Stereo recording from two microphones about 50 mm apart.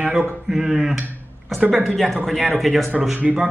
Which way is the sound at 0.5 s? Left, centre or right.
Centre.